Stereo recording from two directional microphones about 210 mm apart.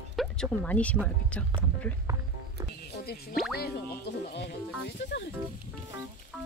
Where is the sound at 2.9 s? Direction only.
50° left (ahead or behind).